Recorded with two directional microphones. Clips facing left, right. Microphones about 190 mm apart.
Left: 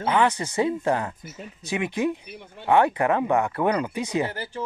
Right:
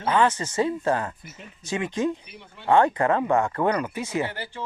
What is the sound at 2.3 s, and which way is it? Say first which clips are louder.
Speech: left 4 dB; 50° left (ahead or behind).